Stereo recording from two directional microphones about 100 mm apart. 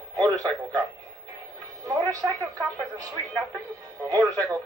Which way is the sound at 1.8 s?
35° right (ahead or behind).